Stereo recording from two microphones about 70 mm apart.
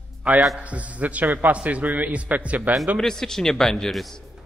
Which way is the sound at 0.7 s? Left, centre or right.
Right.